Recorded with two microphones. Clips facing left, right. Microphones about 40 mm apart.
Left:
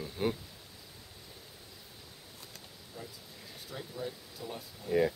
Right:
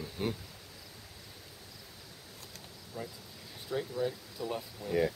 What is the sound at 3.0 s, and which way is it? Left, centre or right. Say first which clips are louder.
Speech: right 5 dB; centre.